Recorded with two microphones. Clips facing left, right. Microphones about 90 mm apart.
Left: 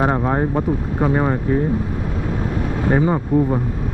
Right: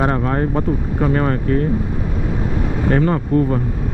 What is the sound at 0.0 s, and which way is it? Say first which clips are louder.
Speech: even; 15° left (ahead or behind).